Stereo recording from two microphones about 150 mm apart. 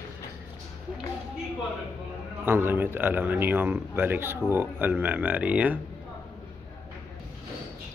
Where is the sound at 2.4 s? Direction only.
15° right (ahead or behind).